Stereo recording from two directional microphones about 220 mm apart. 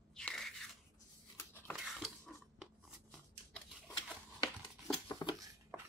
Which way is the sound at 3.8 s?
Centre (ahead or behind).